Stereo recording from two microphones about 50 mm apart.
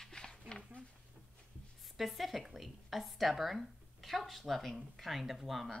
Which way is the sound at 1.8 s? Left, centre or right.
Centre.